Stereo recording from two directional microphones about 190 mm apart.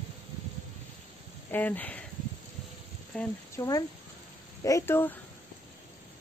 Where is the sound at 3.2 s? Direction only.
15° left (ahead or behind).